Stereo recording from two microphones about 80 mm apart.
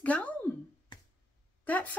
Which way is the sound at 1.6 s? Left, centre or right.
Centre.